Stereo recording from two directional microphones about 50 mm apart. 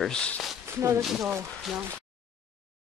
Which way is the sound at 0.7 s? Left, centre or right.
Right.